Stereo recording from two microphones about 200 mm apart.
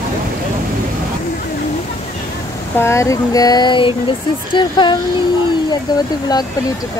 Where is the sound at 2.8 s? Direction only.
15° left (ahead or behind).